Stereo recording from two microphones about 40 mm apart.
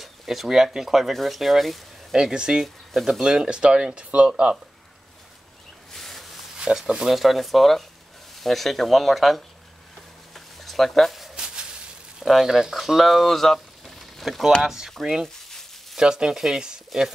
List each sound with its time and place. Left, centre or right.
0.0 s speech: centre
2.1 s speech: centre
2.9 s speech: centre
3.2 s speech: centre
5.9 s a sound: centre
6.6 s speech: centre
10.3 s a sound: centre
11.3 s a sound: right
12.2 s speech: centre
14.6 s speech: centre
15.2 s frying: centre
16.0 s speech: centre